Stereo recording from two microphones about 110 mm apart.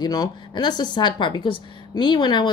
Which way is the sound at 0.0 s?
35° left (ahead or behind).